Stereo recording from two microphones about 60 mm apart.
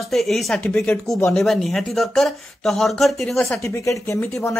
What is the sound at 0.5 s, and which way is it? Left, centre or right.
Speech, centre.